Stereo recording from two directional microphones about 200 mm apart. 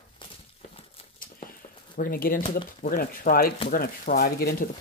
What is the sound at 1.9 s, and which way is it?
Speech, 45° left (ahead or behind).